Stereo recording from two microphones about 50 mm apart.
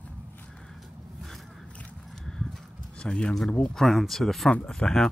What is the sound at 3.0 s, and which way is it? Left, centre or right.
Speech, left.